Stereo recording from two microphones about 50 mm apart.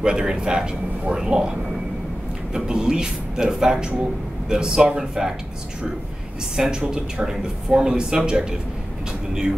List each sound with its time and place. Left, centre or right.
0.0 s speech: centre
2.5 s speech: centre
6.5 s speech: centre